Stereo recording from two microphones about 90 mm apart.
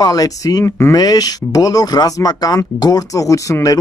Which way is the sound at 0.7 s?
30° left (ahead or behind).